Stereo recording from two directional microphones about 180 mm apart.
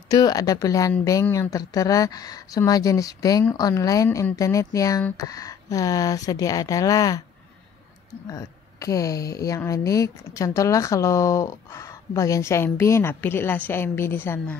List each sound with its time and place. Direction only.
0.1 s speech: 20° left (ahead or behind)
8.3 s a woman's voice: 20° left (ahead or behind)